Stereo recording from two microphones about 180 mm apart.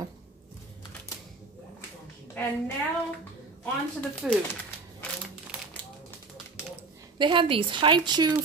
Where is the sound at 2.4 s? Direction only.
10° left (ahead or behind).